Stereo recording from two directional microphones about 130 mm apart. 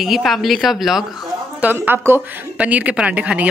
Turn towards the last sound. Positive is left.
turn(degrees=-10)  # may be behind; listen again after turning